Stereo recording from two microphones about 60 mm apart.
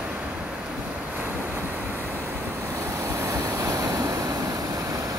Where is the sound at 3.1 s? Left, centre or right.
Right.